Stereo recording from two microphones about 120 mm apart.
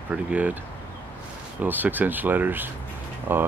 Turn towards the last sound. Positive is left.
turn(degrees=-20)  # may be behind; listen again after turning